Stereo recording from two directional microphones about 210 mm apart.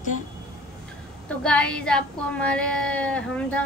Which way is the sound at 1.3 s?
5° left (ahead or behind).